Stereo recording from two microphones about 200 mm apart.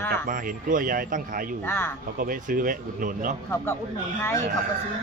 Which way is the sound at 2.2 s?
45° right (ahead or behind).